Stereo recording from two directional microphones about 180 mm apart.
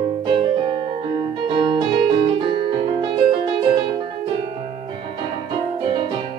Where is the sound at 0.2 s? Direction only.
30° right (ahead or behind).